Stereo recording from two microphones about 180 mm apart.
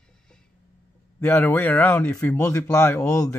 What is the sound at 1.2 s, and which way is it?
Speech, 10° left (ahead or behind).